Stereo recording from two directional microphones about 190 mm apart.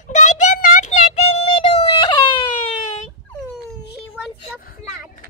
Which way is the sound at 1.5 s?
30° left (ahead or behind).